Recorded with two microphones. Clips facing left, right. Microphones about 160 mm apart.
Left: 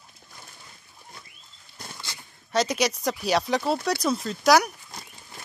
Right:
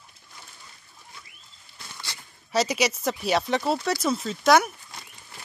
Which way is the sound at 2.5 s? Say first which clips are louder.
Even; 5° right (ahead or behind).